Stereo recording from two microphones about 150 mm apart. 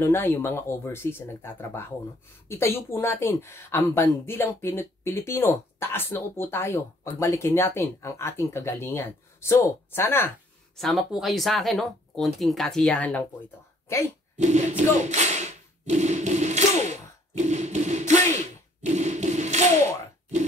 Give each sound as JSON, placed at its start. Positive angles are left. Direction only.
{"t": 0.0, "sound": "speech", "side_deg": 15}
{"t": 10.8, "sound": "speech", "side_deg": 0}
{"t": 14.3, "sound": "a sound", "side_deg": -50}